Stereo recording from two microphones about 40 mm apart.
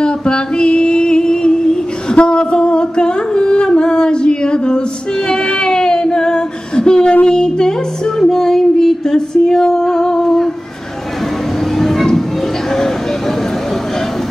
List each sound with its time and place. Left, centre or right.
0.0 s music: left
2.1 s a sound: left
11.8 s music: centre